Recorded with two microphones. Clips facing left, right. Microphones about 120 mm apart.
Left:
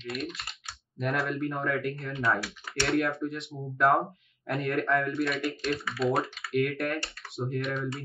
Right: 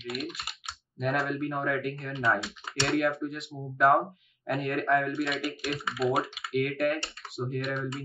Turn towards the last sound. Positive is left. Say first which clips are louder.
# even
turn(degrees=0)  # may be behind; listen again after turning